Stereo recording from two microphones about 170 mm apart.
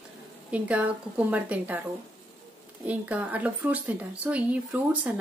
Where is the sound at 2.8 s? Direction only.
10° right (ahead or behind).